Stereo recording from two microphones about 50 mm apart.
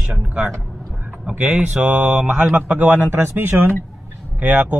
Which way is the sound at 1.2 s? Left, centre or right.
Right.